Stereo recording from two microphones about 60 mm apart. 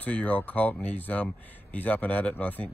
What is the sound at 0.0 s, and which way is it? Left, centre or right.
Speech, left.